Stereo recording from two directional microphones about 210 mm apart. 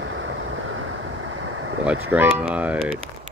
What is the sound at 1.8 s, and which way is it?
Speech, 10° right (ahead or behind).